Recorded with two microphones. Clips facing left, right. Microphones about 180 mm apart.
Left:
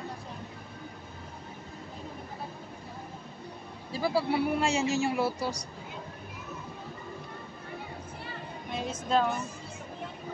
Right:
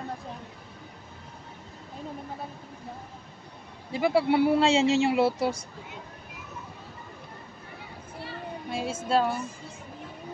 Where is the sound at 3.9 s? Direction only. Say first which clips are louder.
Right 5 dB; 25° right (ahead or behind).